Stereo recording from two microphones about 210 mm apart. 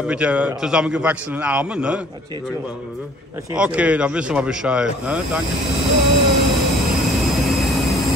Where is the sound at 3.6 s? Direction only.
5° right (ahead or behind).